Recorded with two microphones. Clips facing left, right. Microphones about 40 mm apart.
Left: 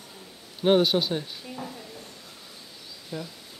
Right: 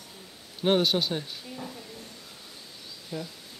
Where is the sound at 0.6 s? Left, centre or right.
Centre.